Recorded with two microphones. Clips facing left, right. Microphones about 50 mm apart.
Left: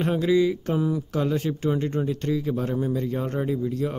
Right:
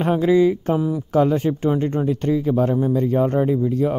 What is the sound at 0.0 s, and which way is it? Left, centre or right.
Speech, right.